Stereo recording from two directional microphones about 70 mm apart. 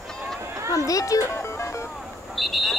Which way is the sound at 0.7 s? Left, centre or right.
Left.